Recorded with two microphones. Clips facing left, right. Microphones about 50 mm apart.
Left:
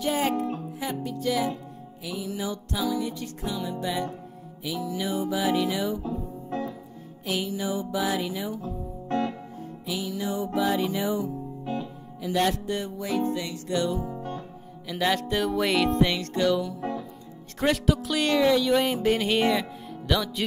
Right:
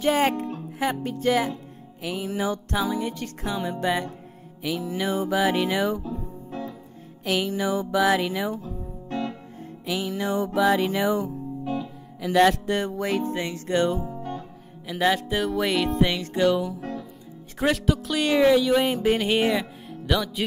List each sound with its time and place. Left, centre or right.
0.1 s music: right
6.0 s music: left
7.2 s music: right
9.8 s music: right
11.6 s music: centre
12.2 s music: right
13.3 s music: right
15.0 s music: centre
18.3 s music: centre